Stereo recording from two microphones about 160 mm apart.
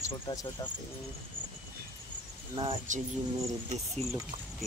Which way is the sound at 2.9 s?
50° right (ahead or behind).